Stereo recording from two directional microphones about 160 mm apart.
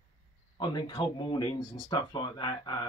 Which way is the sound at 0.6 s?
30° left (ahead or behind).